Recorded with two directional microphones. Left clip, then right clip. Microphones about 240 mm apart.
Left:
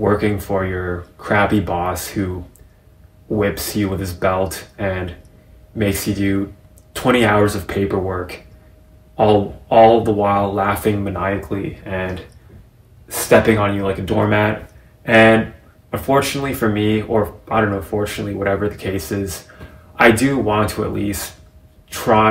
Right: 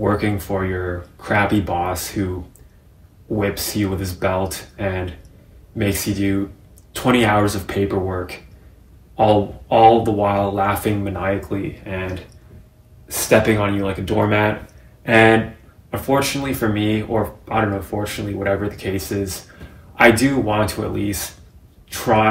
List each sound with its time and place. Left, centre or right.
0.0 s speech: centre
3.3 s speech: centre
13.1 s speech: centre